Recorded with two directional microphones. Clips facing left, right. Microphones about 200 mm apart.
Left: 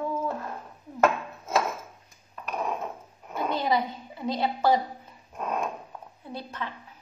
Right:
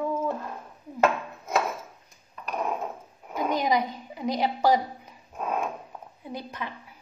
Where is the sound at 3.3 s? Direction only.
15° right (ahead or behind).